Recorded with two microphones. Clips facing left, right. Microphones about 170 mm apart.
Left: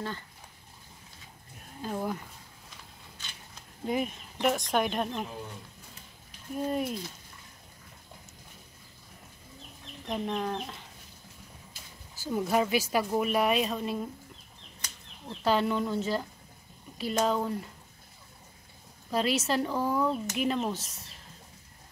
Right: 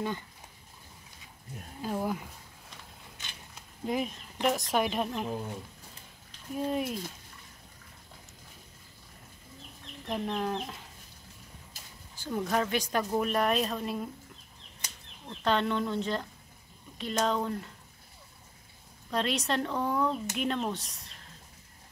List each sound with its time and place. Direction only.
1.8 s speech: 5° right (ahead or behind)
3.8 s speech: centre (ahead or behind)
6.5 s speech: centre (ahead or behind)
10.0 s speech: centre (ahead or behind)
12.2 s speech: 10° left (ahead or behind)
15.2 s speech: 5° left (ahead or behind)
19.0 s speech: 5° left (ahead or behind)